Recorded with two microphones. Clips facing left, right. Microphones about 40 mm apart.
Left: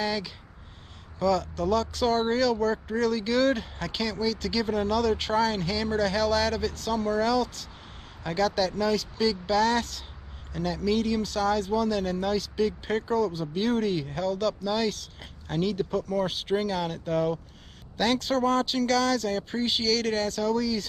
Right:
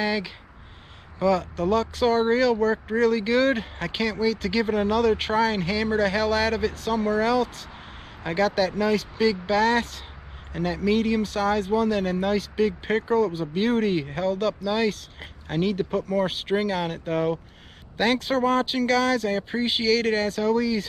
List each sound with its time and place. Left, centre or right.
0.0 s speech: right